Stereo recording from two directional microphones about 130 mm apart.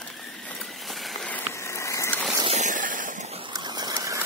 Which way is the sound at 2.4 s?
55° right (ahead or behind).